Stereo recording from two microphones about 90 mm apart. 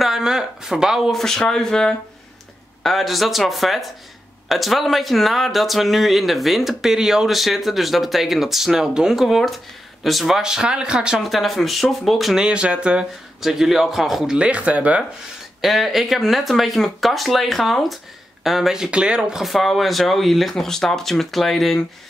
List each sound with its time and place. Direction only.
0.0 s speech: 5° right (ahead or behind)
15.6 s speech: centre (ahead or behind)